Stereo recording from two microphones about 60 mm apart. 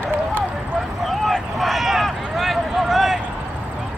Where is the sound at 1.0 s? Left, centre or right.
Centre.